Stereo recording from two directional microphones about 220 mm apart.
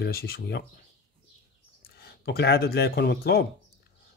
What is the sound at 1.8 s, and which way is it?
A man's voice, 45° left (ahead or behind).